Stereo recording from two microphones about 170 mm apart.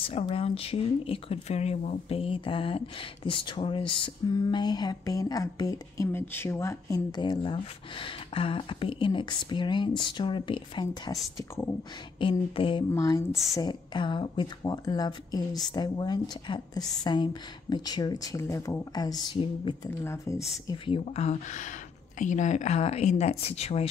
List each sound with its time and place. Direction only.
0.1 s speech: 35° left (ahead or behind)
11.3 s speech: 15° left (ahead or behind)
12.2 s speech: 30° left (ahead or behind)
12.9 s speech: 20° left (ahead or behind)
13.3 s a woman's voice: centre (ahead or behind)
13.6 s speech: 25° left (ahead or behind)
20.6 s speech: 30° left (ahead or behind)